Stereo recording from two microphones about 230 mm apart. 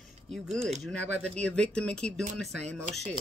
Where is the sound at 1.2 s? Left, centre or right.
Centre.